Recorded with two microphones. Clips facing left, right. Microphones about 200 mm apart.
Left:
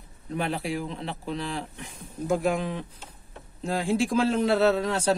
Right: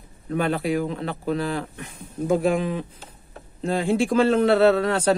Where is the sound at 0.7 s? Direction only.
55° right (ahead or behind).